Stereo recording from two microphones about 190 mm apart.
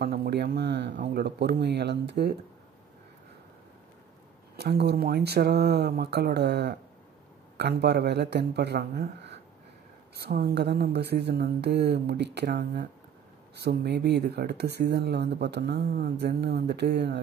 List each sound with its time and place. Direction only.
0.0 s speech: 55° right (ahead or behind)
4.6 s speech: 60° right (ahead or behind)